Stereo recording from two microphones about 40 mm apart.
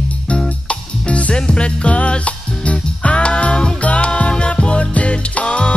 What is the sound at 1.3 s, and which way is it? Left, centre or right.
Music, left.